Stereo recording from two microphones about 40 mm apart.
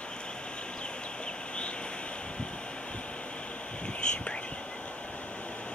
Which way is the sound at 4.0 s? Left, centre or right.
Left.